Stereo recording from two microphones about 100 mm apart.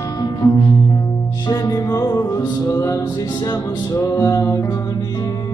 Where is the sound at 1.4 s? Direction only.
40° left (ahead or behind).